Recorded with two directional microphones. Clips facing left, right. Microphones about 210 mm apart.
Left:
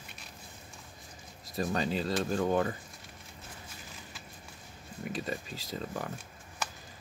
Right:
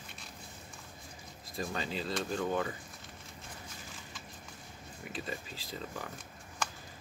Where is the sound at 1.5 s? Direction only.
40° left (ahead or behind).